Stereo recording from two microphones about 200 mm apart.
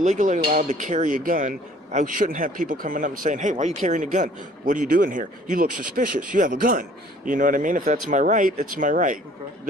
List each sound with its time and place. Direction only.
0.0 s speech: 40° right (ahead or behind)